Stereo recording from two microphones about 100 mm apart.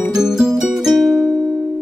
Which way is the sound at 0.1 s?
5° right (ahead or behind).